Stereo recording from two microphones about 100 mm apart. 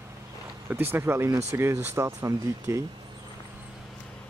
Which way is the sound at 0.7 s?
20° right (ahead or behind).